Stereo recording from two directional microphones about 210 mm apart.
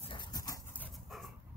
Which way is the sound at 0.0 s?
25° left (ahead or behind).